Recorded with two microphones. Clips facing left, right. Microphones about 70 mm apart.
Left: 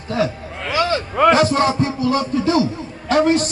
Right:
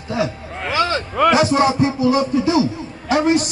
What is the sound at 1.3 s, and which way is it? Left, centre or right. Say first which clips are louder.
A man's voice: even; centre.